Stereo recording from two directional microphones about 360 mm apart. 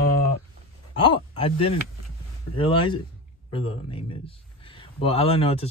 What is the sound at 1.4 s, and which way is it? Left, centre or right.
Speech, centre.